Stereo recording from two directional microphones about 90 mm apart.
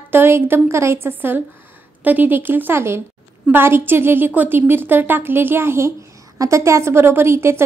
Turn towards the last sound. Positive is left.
turn(degrees=-30)  # may be behind; listen again after turning